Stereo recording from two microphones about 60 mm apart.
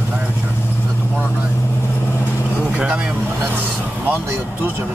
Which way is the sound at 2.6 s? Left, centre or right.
Centre.